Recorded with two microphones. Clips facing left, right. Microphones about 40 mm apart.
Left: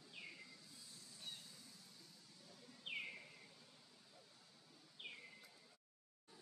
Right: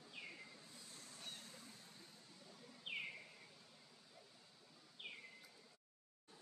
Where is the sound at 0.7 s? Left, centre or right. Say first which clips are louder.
Right 3 dB; right.